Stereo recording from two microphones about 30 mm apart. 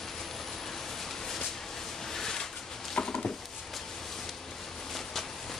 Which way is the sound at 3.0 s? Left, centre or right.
Left.